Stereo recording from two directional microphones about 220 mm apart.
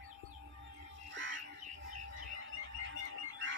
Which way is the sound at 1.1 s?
60° right (ahead or behind).